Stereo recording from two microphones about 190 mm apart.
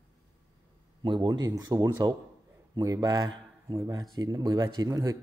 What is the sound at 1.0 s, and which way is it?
Speech, 25° right (ahead or behind).